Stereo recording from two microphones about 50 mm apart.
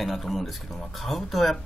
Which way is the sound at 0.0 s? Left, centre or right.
Centre.